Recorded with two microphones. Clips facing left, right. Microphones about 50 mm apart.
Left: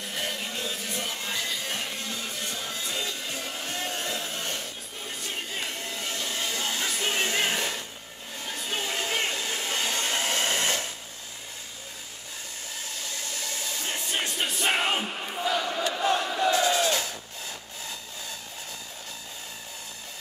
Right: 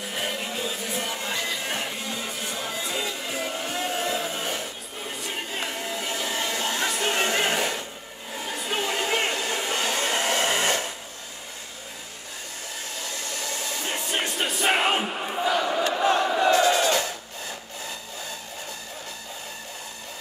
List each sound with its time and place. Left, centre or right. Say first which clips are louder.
0.0 s music: right 3 dB; centre
8.4 s hair dryer: right 4 dB; centre
13.3 s music: right 4 dB; centre
15.9 s a sound: right 4 dB; centre
16.5 s crowd: right 4 dB; centre